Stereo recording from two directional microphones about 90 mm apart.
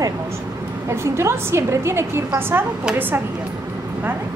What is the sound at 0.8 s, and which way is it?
A woman's voice, 30° right (ahead or behind).